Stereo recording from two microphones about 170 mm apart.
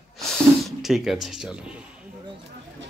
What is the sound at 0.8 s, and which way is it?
Speech, centre (ahead or behind).